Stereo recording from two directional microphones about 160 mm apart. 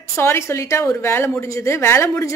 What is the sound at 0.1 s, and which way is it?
A woman's voice, 15° left (ahead or behind).